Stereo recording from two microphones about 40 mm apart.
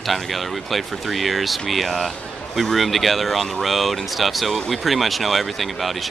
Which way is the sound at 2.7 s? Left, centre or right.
Centre.